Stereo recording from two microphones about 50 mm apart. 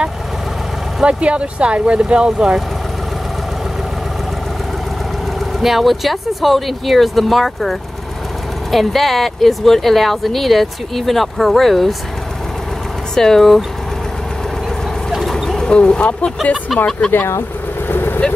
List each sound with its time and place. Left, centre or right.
1.0 s speech: right
5.6 s speech: centre
8.7 s speech: centre
13.1 s speech: centre
15.0 s chicken: centre
15.6 s speech: centre
17.3 s vehicle: left